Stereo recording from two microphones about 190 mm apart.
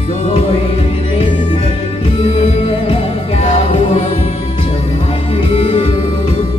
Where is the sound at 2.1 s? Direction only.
30° left (ahead or behind).